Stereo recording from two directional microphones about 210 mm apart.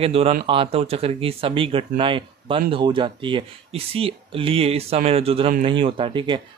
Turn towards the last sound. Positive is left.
turn(degrees=-20)  # may be behind; listen again after turning